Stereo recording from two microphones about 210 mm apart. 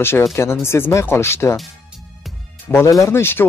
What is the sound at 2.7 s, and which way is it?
Speech, 10° left (ahead or behind).